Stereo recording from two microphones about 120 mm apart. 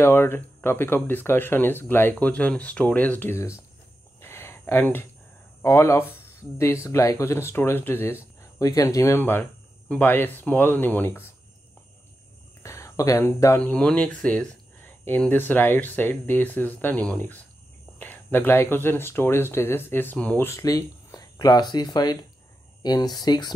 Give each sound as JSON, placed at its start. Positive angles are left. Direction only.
{"t": 0.0, "sound": "speech", "side_deg": 20}
{"t": 4.2, "sound": "a sound", "side_deg": 20}
{"t": 5.6, "sound": "speech", "side_deg": 25}
{"t": 12.6, "sound": "speech", "side_deg": 25}
{"t": 13.6, "sound": "speech", "side_deg": 10}
{"t": 20.4, "sound": "speech", "side_deg": 25}